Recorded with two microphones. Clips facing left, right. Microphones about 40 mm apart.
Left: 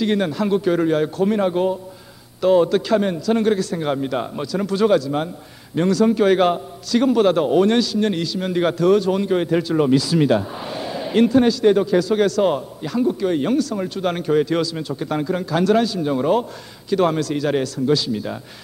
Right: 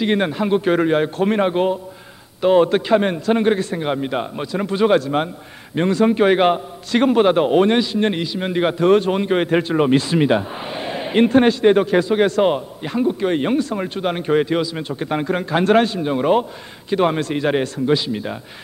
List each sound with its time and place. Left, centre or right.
0.0 s a man's voice: right
8.9 s a man's voice: right
12.0 s a man's voice: right
14.5 s a man's voice: centre
14.8 s a man's voice: right